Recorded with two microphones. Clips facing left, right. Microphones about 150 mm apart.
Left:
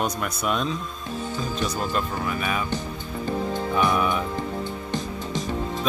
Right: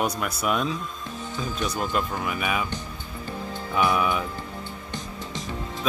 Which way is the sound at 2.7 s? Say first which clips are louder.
Left 6 dB; 15° left (ahead or behind).